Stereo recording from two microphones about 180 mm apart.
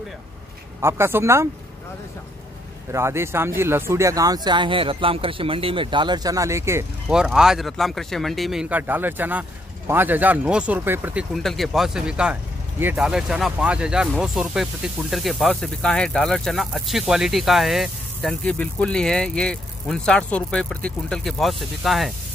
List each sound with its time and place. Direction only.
0.7 s speech: 15° right (ahead or behind)
2.9 s speech: 15° right (ahead or behind)
7.1 s speech: 5° right (ahead or behind)
11.3 s speech: centre (ahead or behind)